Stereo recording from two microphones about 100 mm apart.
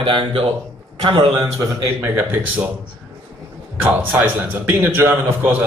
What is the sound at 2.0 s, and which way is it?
Speech, 20° right (ahead or behind).